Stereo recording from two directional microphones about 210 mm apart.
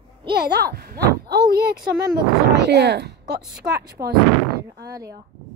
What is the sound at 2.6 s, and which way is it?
Speech, 55° right (ahead or behind).